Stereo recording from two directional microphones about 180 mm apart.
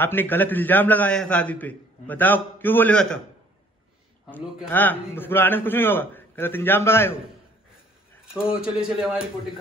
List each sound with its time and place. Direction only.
0.0 s a man's voice: 10° left (ahead or behind)
4.6 s a man's voice: 10° left (ahead or behind)
8.3 s speech: 5° right (ahead or behind)